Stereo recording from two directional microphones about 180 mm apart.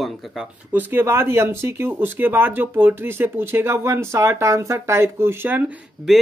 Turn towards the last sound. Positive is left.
turn(degrees=-10)  # may be behind; listen again after turning